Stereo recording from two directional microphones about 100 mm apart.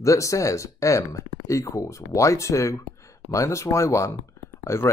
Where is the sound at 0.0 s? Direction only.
30° left (ahead or behind).